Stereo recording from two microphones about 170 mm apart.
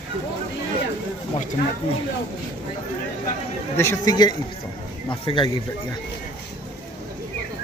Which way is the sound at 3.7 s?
20° left (ahead or behind).